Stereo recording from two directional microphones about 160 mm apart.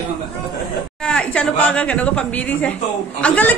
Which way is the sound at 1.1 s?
5° left (ahead or behind).